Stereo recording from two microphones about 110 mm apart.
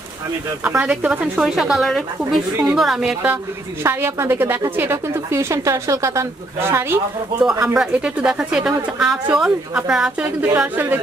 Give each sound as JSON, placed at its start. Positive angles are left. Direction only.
{"t": 0.7, "sound": "speech", "side_deg": -10}
{"t": 3.8, "sound": "speech", "side_deg": -20}
{"t": 7.6, "sound": "a woman's voice", "side_deg": -5}